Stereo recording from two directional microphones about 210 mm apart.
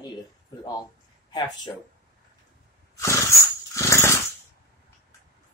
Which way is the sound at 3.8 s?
15° left (ahead or behind).